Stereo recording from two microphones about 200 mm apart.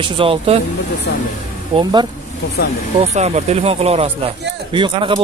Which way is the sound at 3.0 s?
35° right (ahead or behind).